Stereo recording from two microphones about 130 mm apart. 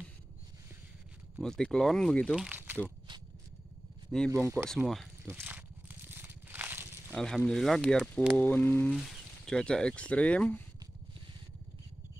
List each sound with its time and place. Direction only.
1.4 s speech: 5° left (ahead or behind)
2.3 s speech: 10° right (ahead or behind)
4.3 s speech: 20° right (ahead or behind)
5.2 s crumpling: 15° right (ahead or behind)
7.2 s speech: 5° left (ahead or behind)
8.4 s mantra: 15° left (ahead or behind)
8.9 s speech: 5° left (ahead or behind)